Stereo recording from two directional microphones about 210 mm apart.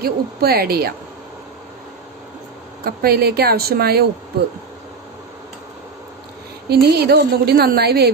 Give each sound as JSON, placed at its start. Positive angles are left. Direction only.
{"t": 0.0, "sound": "a woman's voice", "side_deg": -45}
{"t": 2.8, "sound": "a woman's voice", "side_deg": -45}
{"t": 6.7, "sound": "a woman's voice", "side_deg": -50}